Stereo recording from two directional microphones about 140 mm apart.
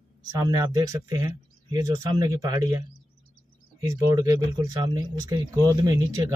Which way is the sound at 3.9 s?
30° right (ahead or behind).